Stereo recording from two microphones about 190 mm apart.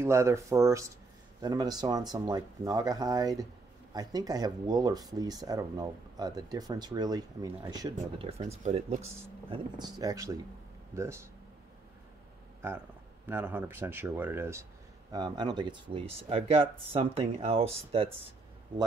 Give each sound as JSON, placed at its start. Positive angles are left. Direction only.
{"t": 0.0, "sound": "speech", "side_deg": -15}
{"t": 8.3, "sound": "speech", "side_deg": -35}
{"t": 9.0, "sound": "speech", "side_deg": -15}
{"t": 12.6, "sound": "speech", "side_deg": -10}